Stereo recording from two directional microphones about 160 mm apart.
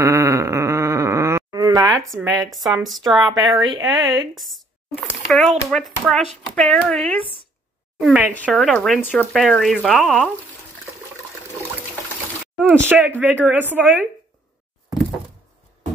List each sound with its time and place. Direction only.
0.0 s a sound: 20° right (ahead or behind)
2.4 s speech: centre (ahead or behind)
3.7 s speech: 25° right (ahead or behind)
4.4 s speech: centre (ahead or behind)
8.0 s speech: 5° right (ahead or behind)
12.5 s speech: 10° right (ahead or behind)